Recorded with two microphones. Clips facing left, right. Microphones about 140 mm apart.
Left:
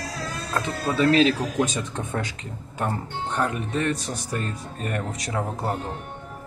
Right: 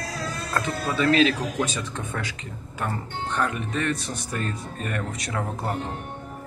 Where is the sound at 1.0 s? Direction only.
30° left (ahead or behind).